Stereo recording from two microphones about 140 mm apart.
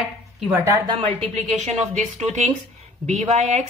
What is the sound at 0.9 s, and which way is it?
Speech, 55° right (ahead or behind).